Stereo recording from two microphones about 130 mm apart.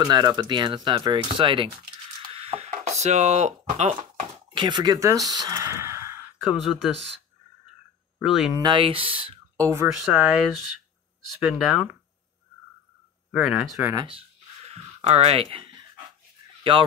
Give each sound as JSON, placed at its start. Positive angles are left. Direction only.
{"t": 0.0, "sound": "speech", "side_deg": -30}
{"t": 2.2, "sound": "a sound", "side_deg": -50}
{"t": 3.0, "sound": "speech", "side_deg": -60}
{"t": 4.6, "sound": "speech", "side_deg": -35}
{"t": 6.3, "sound": "speech", "side_deg": 0}
{"t": 8.2, "sound": "speech", "side_deg": -5}
{"t": 8.5, "sound": "speech", "side_deg": -35}
{"t": 9.6, "sound": "speech", "side_deg": -25}
{"t": 9.9, "sound": "speech", "side_deg": -5}
{"t": 13.3, "sound": "speech", "side_deg": -5}
{"t": 14.7, "sound": "a sound", "side_deg": -55}